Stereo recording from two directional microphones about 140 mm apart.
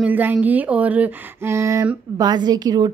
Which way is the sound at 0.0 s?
10° right (ahead or behind).